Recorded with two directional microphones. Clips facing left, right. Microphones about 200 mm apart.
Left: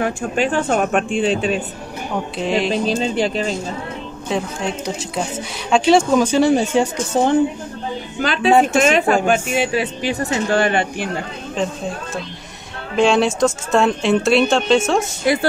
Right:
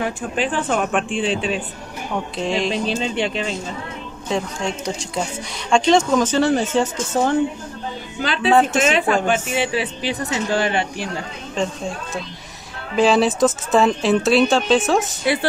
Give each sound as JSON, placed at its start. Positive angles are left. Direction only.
{"t": 0.0, "sound": "speech", "side_deg": 45}
{"t": 2.3, "sound": "speech", "side_deg": 5}
{"t": 2.7, "sound": "speech", "side_deg": 40}
{"t": 4.3, "sound": "speech", "side_deg": 0}
{"t": 8.2, "sound": "speech", "side_deg": 50}
{"t": 8.5, "sound": "speech", "side_deg": 10}
{"t": 8.8, "sound": "speech", "side_deg": 45}
{"t": 11.5, "sound": "speech", "side_deg": 0}